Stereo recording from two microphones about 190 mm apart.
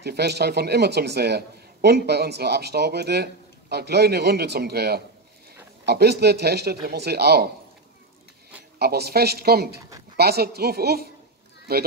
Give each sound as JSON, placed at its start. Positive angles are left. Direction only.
{"t": 0.0, "sound": "a man's voice", "side_deg": -60}
{"t": 8.7, "sound": "a man's voice", "side_deg": -55}